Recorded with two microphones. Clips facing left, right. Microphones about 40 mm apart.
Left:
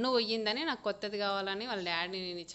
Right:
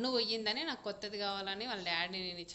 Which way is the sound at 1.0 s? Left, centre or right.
Centre.